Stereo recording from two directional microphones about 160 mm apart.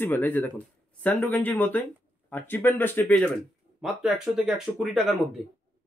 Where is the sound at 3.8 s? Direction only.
Centre (ahead or behind).